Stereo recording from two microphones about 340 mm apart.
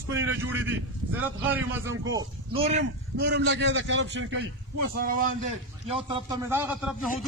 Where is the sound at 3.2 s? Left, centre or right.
Right.